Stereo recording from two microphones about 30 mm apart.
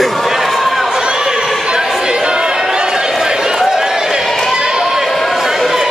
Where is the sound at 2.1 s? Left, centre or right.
Right.